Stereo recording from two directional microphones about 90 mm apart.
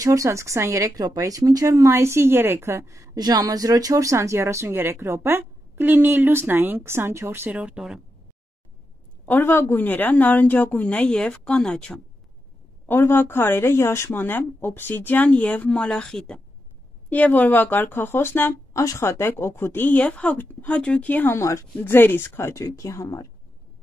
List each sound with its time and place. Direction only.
0.0 s speech: 35° right (ahead or behind)
7.5 s speech: 10° right (ahead or behind)
9.2 s a woman's voice: 20° left (ahead or behind)
12.8 s speech: 25° left (ahead or behind)